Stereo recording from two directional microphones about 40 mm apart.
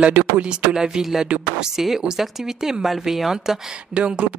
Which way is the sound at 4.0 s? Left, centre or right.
Right.